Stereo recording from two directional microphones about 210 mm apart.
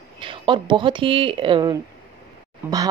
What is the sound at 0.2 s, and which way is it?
Speech, 25° right (ahead or behind).